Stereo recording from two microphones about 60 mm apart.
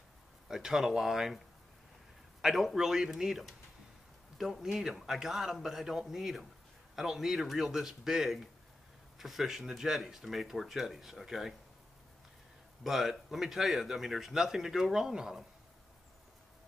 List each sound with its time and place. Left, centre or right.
0.5 s speech: centre
2.4 s speech: centre
12.8 s speech: centre